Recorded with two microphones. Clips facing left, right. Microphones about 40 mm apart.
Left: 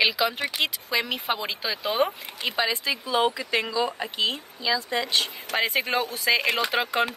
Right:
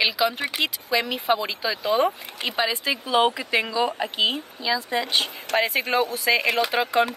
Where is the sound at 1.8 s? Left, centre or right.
Centre.